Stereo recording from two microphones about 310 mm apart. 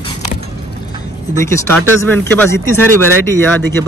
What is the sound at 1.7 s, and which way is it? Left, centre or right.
Speech, right.